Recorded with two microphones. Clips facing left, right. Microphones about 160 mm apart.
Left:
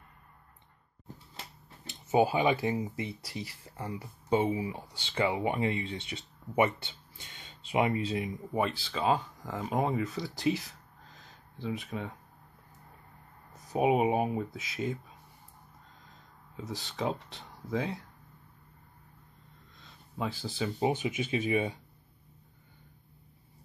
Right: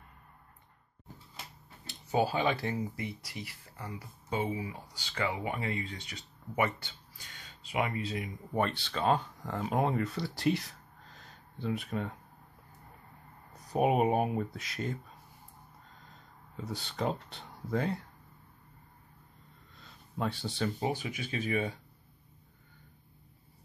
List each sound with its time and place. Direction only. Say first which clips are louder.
1.9 s speech: left 4 dB; 20° left (ahead or behind)
8.5 s speech: right 2 dB; centre (ahead or behind)
13.5 s speech: left 1 dB; centre (ahead or behind)
16.5 s speech: even; centre (ahead or behind)
19.8 s a sound: right 1 dB; centre (ahead or behind)
20.8 s speech: left 4 dB; 20° left (ahead or behind)